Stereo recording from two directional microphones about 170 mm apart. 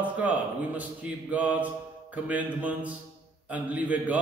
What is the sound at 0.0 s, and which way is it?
A man's voice, 10° right (ahead or behind).